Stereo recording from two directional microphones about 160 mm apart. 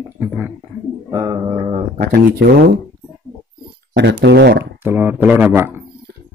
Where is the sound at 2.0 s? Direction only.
70° right (ahead or behind).